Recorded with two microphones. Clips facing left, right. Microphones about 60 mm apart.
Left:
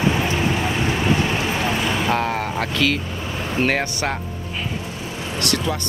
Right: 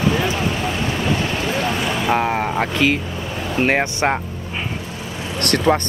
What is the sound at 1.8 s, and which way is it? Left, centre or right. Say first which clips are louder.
Speech: right 1 dB; centre.